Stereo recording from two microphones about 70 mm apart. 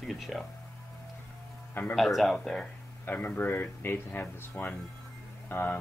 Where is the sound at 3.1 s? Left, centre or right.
Left.